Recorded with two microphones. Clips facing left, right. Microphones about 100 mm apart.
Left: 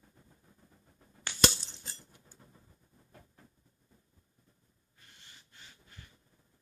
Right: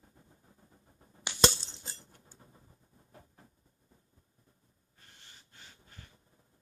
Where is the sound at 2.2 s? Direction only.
25° right (ahead or behind).